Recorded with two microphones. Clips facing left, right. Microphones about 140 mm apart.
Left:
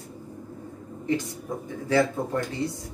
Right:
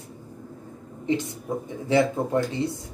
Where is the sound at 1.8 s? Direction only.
20° right (ahead or behind).